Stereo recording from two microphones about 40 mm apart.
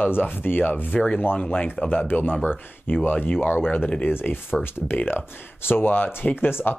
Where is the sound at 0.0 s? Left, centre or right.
Left.